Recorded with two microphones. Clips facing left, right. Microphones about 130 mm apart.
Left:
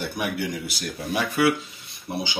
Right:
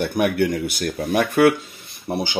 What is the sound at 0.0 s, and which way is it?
Speech, 60° right (ahead or behind).